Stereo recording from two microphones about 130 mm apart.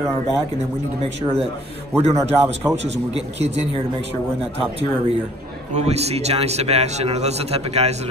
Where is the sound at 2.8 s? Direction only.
55° right (ahead or behind).